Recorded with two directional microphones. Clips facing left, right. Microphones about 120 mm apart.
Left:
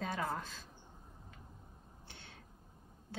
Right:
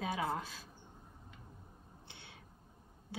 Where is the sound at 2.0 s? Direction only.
15° right (ahead or behind).